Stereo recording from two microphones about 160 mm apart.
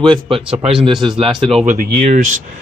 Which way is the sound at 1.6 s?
60° right (ahead or behind).